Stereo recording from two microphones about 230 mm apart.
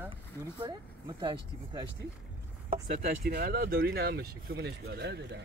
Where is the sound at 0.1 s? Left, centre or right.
Centre.